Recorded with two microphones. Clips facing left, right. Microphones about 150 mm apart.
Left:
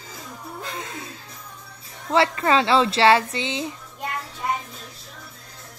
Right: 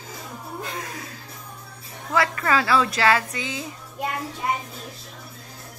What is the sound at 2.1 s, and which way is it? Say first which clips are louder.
Speech: left 3 dB; 25° left (ahead or behind).